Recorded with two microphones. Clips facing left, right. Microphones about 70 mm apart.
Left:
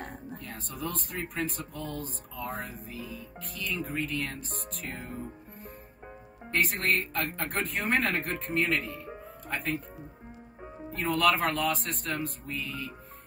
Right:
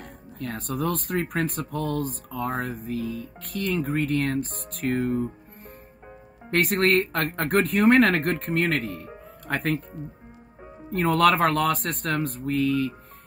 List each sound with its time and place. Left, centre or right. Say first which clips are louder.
0.0 s a sound: left 3 dB; left
0.4 s speech: right 12 dB; right
6.5 s speech: right 7 dB; right
10.9 s speech: right 6 dB; right